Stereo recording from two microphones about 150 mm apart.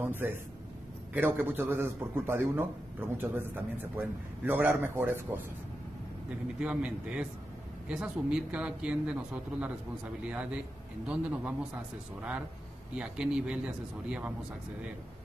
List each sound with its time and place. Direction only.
0.0 s a man's voice: 15° right (ahead or behind)
6.6 s a man's voice: 10° right (ahead or behind)
11.1 s a man's voice: 5° right (ahead or behind)
12.9 s a man's voice: 5° right (ahead or behind)